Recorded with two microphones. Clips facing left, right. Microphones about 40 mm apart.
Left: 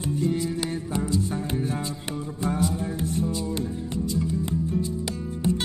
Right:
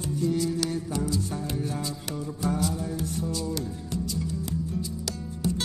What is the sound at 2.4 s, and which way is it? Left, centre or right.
Music, left.